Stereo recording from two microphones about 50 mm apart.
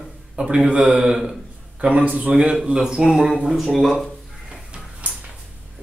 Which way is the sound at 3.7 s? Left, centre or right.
Centre.